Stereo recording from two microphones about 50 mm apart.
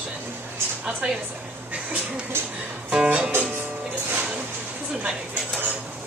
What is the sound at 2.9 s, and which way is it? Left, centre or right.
Music, right.